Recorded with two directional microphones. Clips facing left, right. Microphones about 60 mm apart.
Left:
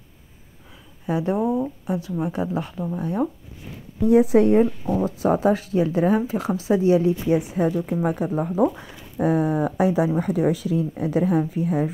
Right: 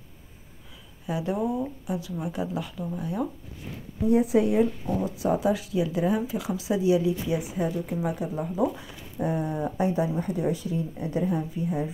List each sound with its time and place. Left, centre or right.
1.0 s speech: left
4.0 s speech: left
4.5 s speech: left
9.2 s speech: left